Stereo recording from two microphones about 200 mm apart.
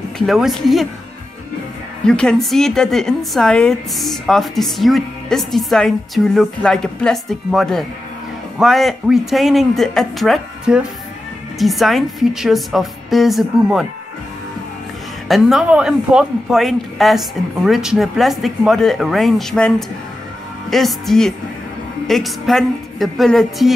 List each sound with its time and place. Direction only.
0.3 s a woman's voice: centre (ahead or behind)
2.0 s a woman's voice: 5° left (ahead or behind)
15.2 s a woman's voice: centre (ahead or behind)
20.7 s a woman's voice: centre (ahead or behind)